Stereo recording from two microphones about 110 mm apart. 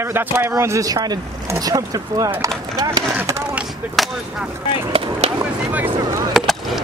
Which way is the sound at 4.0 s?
Centre (ahead or behind).